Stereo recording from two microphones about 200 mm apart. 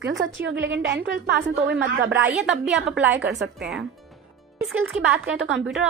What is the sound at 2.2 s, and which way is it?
Speech, 5° right (ahead or behind).